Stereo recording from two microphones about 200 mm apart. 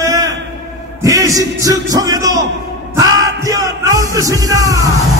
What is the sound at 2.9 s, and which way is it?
Music, 15° right (ahead or behind).